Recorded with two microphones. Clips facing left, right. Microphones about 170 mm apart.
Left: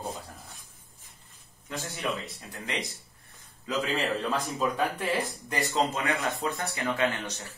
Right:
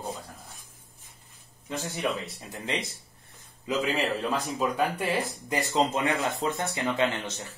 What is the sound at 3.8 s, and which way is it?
Speech, centre (ahead or behind).